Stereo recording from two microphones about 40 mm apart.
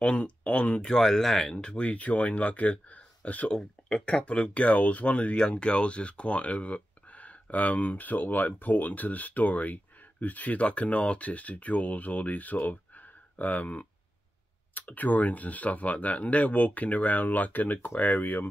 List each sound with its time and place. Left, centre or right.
0.0 s speech: left
0.8 s speech: centre
1.6 s speech: left